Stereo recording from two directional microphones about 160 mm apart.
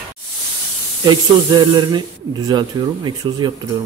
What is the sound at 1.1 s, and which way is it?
Speech, 25° right (ahead or behind).